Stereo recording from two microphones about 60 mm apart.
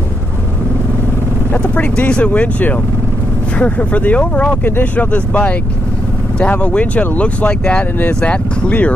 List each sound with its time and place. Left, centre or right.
1.6 s speech: left
4.6 s speech: left
5.1 s speech: left
6.6 s speech: left